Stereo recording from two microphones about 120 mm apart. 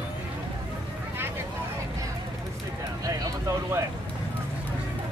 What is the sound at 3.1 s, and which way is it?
Vehicle, 25° right (ahead or behind).